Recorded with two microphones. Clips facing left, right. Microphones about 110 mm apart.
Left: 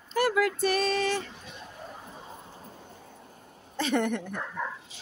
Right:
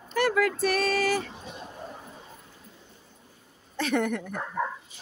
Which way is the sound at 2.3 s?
35° left (ahead or behind).